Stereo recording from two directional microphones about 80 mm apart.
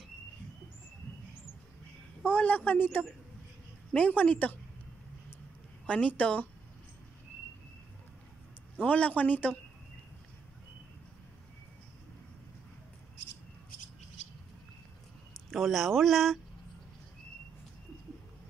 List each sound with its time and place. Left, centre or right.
2.2 s a man's voice: left
5.9 s a woman's voice: centre
8.7 s a man's voice: centre
15.5 s speech: centre